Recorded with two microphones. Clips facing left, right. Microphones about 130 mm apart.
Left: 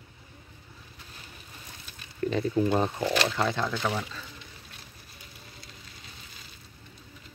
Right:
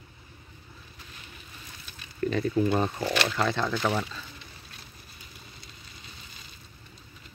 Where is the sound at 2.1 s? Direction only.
20° left (ahead or behind).